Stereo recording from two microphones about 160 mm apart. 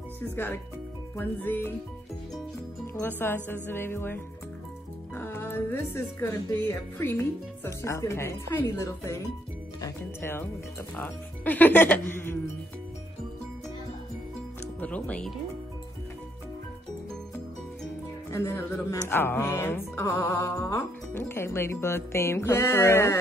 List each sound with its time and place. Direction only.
1.1 s speech: 10° left (ahead or behind)
2.9 s speech: 15° left (ahead or behind)
14.8 s speech: 10° left (ahead or behind)
18.3 s speech: 20° left (ahead or behind)